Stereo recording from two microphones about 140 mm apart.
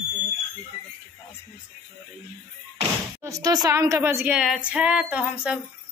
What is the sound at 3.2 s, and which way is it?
A woman's voice, 25° right (ahead or behind).